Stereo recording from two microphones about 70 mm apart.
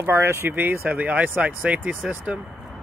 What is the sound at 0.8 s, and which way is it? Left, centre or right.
Speech, right.